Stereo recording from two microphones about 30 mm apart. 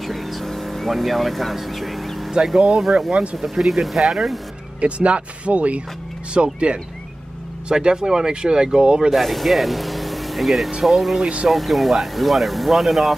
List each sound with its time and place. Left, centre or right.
0.0 s vehicle: centre
2.4 s speech: centre
4.7 s speech: right
6.3 s speech: right
9.1 s speech: centre